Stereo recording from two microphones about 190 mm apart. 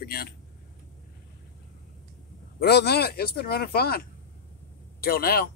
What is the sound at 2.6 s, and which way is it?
Speech, 60° left (ahead or behind).